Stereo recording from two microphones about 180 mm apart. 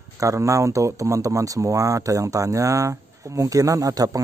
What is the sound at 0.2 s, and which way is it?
A man's voice, 15° right (ahead or behind).